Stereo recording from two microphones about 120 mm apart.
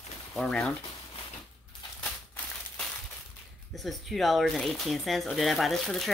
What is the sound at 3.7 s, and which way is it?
Speech, centre (ahead or behind).